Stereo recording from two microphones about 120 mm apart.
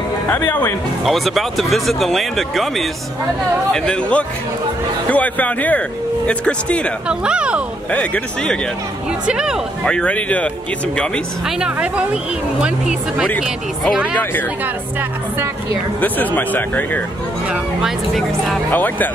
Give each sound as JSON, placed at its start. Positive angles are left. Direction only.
{"t": 0.3, "sound": "speech", "side_deg": 15}
{"t": 1.0, "sound": "speech", "side_deg": 0}
{"t": 7.1, "sound": "speech", "side_deg": -10}
{"t": 7.9, "sound": "speech", "side_deg": 10}
{"t": 9.2, "sound": "speech", "side_deg": -5}
{"t": 9.8, "sound": "speech", "side_deg": 10}
{"t": 11.4, "sound": "speech", "side_deg": -10}
{"t": 16.0, "sound": "speech", "side_deg": 15}
{"t": 17.5, "sound": "speech", "side_deg": 0}
{"t": 18.7, "sound": "speech", "side_deg": 15}